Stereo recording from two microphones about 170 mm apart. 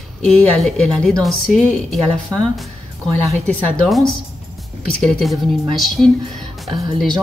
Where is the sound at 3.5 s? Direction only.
Centre (ahead or behind).